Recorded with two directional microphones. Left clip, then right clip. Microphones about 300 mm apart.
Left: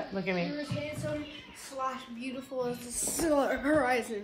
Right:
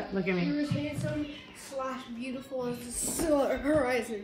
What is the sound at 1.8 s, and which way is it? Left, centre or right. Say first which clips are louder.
Speech: left 1 dB; centre.